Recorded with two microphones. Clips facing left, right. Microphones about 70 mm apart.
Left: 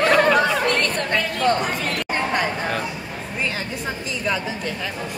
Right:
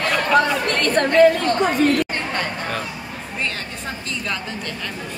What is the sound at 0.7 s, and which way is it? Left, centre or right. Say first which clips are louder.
Speech: right 4 dB; right.